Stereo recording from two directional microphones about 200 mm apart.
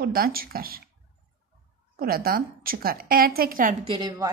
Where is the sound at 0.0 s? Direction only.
50° right (ahead or behind).